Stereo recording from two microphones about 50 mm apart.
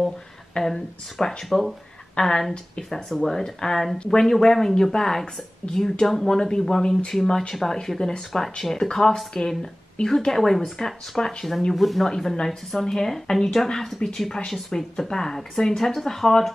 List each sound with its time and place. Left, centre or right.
0.6 s a woman's voice: centre